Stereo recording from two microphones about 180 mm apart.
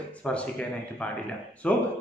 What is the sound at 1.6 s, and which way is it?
Speech, 5° left (ahead or behind).